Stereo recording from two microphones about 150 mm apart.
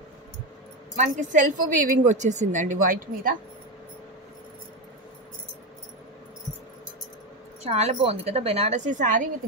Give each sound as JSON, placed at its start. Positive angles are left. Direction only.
{"t": 0.9, "sound": "a woman's voice", "side_deg": -55}
{"t": 7.6, "sound": "a woman's voice", "side_deg": -45}